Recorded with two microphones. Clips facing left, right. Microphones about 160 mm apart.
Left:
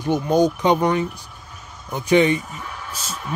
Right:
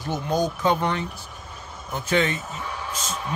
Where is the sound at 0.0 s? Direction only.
20° left (ahead or behind).